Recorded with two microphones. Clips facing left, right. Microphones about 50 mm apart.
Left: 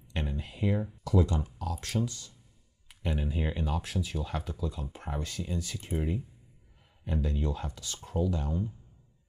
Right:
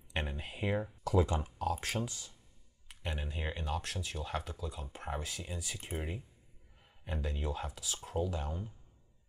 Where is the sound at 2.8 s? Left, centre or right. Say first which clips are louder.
Left 7 dB; centre.